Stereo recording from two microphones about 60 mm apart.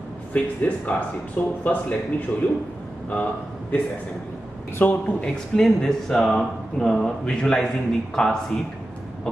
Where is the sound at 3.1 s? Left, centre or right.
Left.